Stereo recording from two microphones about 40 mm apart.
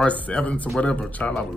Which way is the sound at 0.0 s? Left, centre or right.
Left.